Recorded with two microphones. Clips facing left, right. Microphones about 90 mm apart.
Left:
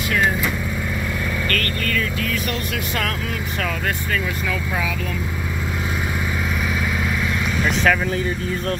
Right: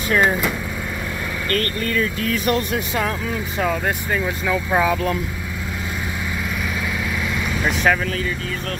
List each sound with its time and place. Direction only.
1.5 s speech: 30° right (ahead or behind)
3.6 s speech: 20° right (ahead or behind)
4.7 s speech: 35° right (ahead or behind)